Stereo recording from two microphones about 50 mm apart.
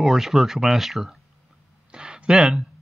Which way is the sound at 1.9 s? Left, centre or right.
Centre.